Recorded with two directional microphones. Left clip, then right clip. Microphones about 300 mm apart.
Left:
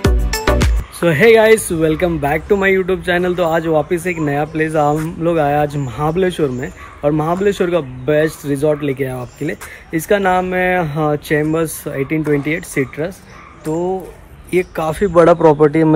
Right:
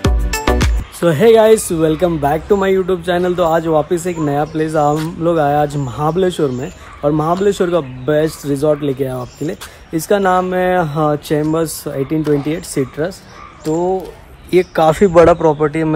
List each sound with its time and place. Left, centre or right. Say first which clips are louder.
0.0 s music: even; centre
1.0 s a man's voice: even; centre
15.1 s speech: left 3 dB; centre